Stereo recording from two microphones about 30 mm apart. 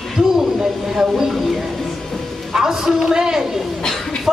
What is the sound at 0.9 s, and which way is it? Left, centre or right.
Speech, centre.